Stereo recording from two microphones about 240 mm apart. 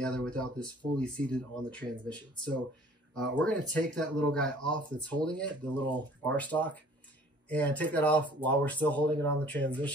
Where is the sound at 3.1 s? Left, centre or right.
Centre.